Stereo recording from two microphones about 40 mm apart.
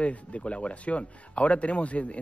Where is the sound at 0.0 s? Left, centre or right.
Left.